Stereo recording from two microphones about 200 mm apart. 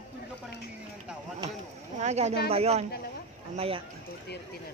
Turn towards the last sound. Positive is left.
turn(degrees=-30)  # may be behind; listen again after turning